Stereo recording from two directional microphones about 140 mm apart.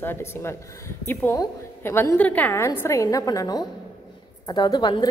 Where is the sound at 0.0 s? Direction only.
15° left (ahead or behind).